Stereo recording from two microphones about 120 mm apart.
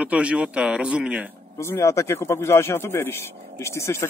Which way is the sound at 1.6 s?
25° left (ahead or behind).